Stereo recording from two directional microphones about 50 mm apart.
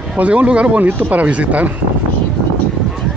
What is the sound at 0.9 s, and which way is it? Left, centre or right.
Speech, right.